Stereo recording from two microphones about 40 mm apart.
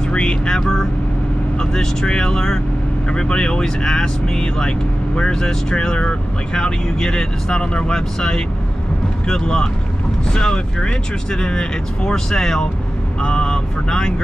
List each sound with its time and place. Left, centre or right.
0.1 s speech: left
3.1 s speech: left